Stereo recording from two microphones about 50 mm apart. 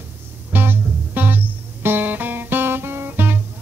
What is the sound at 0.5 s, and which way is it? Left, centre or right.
Music, right.